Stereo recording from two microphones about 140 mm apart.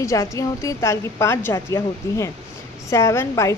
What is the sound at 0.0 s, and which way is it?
A woman's voice, 20° left (ahead or behind).